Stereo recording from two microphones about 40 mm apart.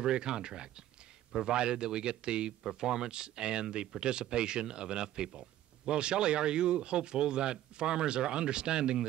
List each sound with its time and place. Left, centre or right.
0.0 s speech: right